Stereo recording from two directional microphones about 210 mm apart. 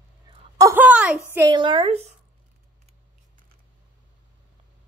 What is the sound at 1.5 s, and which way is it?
Speech, 20° right (ahead or behind).